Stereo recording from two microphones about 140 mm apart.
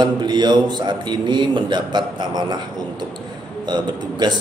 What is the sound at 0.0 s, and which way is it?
Speech, 30° right (ahead or behind).